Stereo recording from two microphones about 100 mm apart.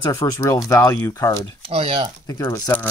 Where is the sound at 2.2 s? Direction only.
35° left (ahead or behind).